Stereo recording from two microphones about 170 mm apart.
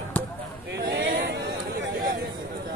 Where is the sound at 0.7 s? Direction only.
85° right.